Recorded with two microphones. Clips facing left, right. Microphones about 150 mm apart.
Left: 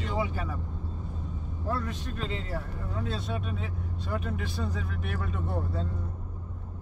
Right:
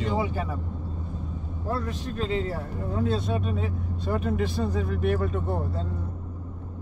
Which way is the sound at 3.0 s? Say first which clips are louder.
Right 7 dB; 40° right (ahead or behind).